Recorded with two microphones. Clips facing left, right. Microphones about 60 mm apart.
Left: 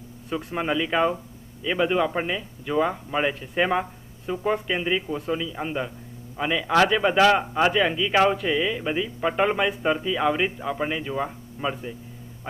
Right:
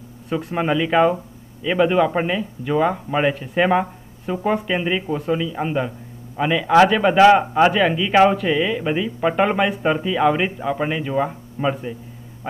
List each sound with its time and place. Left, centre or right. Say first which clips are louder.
0.5 s speech: right 5 dB; right